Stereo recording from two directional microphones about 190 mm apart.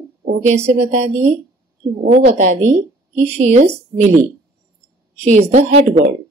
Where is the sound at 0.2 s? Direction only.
35° right (ahead or behind).